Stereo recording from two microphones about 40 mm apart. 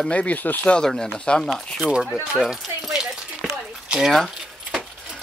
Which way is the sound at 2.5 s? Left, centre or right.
Centre.